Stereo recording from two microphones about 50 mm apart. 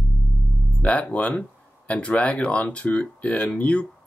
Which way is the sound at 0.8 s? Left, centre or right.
Left.